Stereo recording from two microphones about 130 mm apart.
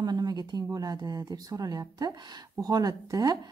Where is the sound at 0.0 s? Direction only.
30° right (ahead or behind).